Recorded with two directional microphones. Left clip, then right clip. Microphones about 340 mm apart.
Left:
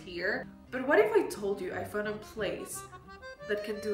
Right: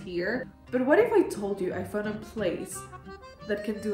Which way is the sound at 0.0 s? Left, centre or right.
Centre.